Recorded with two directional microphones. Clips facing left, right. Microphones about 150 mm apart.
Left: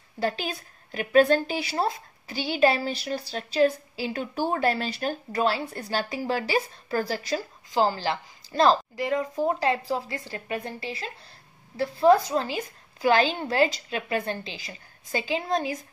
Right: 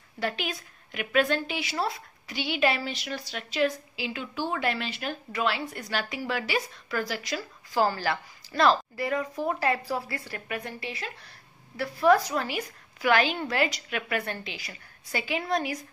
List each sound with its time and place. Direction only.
0.2 s a woman's voice: 35° left (ahead or behind)
7.7 s a woman's voice: 25° left (ahead or behind)